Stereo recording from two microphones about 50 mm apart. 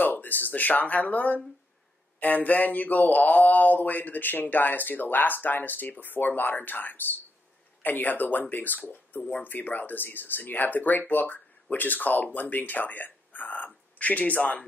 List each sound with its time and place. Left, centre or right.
0.0 s speech: left
2.1 s mantra: left